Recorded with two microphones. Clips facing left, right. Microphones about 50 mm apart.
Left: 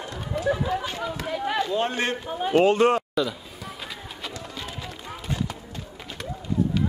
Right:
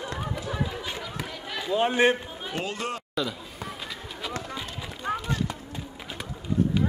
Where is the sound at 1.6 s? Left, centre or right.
Centre.